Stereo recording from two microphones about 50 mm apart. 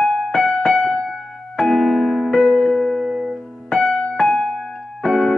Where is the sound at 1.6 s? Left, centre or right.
Centre.